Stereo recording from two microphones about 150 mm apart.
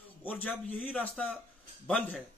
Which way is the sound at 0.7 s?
10° left (ahead or behind).